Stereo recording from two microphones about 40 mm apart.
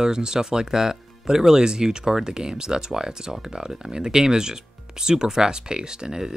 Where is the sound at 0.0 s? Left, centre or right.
Centre.